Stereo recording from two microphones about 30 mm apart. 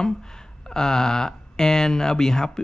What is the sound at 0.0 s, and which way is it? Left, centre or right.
Speech, left.